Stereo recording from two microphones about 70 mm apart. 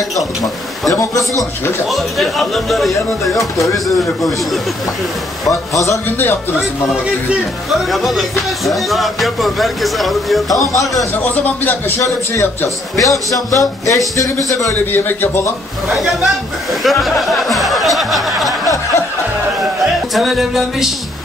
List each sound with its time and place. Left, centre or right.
0.9 s a man's voice: left
1.9 s music: centre
5.5 s a man's voice: left
6.0 s speech: left
7.9 s music: centre
12.4 s a man's voice: left
15.9 s music: centre
20.2 s music: centre